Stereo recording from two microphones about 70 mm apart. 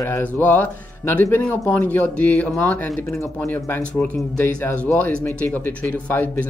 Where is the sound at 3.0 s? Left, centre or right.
Left.